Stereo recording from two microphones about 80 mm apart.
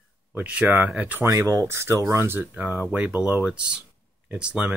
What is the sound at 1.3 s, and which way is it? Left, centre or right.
Speech, right.